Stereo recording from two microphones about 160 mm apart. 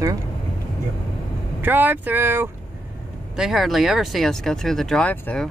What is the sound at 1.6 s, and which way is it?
Speech, 10° right (ahead or behind).